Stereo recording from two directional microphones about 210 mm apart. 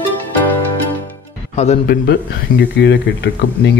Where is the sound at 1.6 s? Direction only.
30° left (ahead or behind).